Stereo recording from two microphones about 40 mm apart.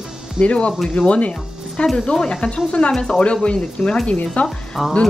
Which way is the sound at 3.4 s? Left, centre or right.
Left.